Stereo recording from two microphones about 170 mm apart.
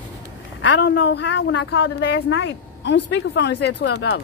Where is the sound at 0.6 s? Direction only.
90° left.